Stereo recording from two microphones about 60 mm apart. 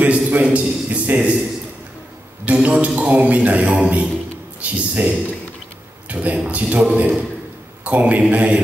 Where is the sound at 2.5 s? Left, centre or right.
Right.